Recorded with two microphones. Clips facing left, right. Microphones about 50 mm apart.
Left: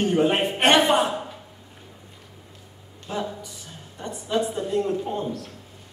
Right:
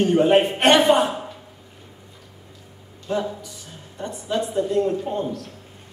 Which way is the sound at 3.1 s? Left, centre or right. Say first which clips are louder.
Right 5 dB; centre.